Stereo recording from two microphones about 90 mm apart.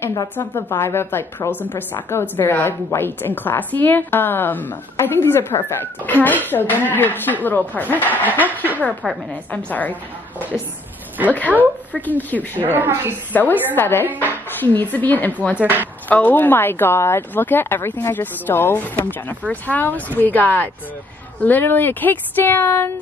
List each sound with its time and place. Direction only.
0.1 s a woman's voice: 45° left (ahead or behind)
0.7 s a woman's voice: 30° left (ahead or behind)
9.3 s a woman's voice: 15° left (ahead or behind)
11.2 s a woman's voice: 25° right (ahead or behind)
11.9 s a woman's voice: 20° left (ahead or behind)
12.5 s a woman's voice: 20° right (ahead or behind)
13.3 s a woman's voice: 20° left (ahead or behind)
15.5 s a woman's voice: 20° right (ahead or behind)
16.1 s a woman's voice: 20° left (ahead or behind)